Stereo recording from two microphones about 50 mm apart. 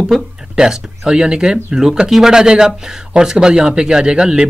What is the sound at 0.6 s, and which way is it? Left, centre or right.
Speech, centre.